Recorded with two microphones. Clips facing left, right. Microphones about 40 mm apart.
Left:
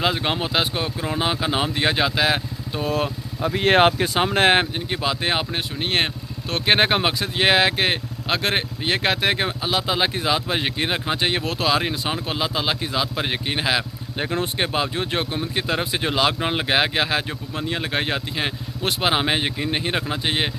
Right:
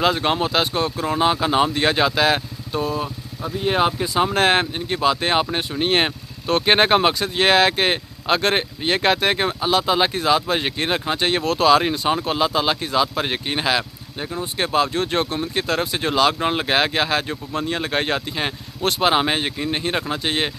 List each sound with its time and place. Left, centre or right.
0.0 s speech: centre
2.9 s speech: left
4.2 s speech: left
4.7 s speech: centre